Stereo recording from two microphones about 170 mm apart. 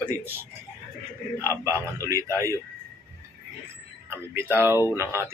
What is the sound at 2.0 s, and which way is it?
Speech, 20° right (ahead or behind).